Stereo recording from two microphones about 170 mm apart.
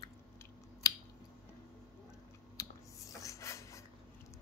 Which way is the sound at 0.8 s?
20° left (ahead or behind).